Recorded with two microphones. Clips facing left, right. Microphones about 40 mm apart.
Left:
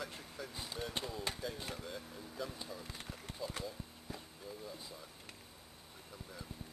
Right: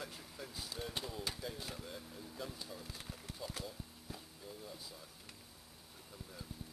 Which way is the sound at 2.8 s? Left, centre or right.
Centre.